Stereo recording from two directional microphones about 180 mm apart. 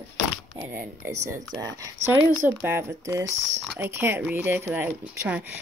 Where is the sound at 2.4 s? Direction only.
15° right (ahead or behind).